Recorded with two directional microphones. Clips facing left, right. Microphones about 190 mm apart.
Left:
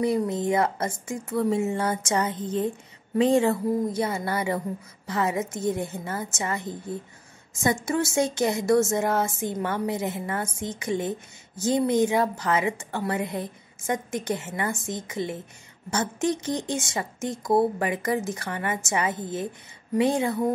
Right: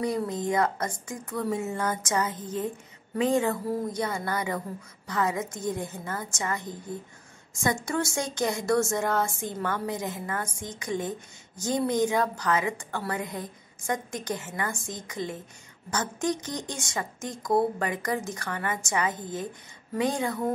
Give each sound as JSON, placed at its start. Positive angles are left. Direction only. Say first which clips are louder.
{"t": 0.0, "sound": "a woman's voice", "louder": "left 4 dB", "side_deg": 25}
{"t": 7.6, "sound": "a woman's voice", "louder": "left 3 dB", "side_deg": 20}